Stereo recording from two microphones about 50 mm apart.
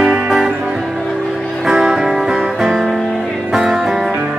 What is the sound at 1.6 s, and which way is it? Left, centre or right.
Music, centre.